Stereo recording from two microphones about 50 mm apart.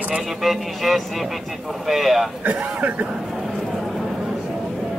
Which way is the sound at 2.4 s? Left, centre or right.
Right.